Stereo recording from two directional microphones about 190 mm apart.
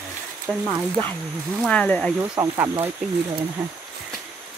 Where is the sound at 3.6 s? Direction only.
5° right (ahead or behind).